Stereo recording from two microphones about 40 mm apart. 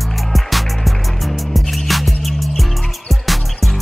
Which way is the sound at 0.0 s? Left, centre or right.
Centre.